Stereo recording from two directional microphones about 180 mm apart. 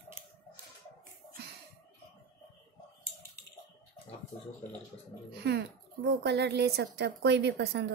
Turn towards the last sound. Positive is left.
turn(degrees=-65)  # may be behind; listen again after turning